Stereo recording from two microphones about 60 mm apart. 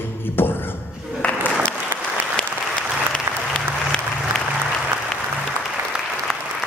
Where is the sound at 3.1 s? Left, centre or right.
Centre.